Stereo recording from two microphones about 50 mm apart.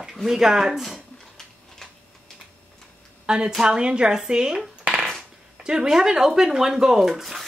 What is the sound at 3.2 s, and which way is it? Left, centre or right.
A woman's voice, centre.